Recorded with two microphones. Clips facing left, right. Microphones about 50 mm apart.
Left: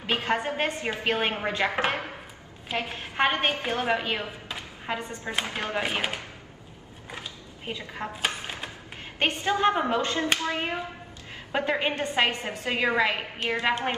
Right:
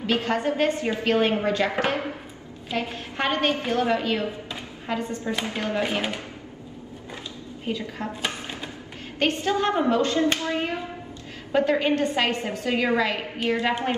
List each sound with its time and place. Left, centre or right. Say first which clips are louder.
0.0 s a woman's voice: right 3 dB; left
7.6 s a woman's voice: right 4 dB; left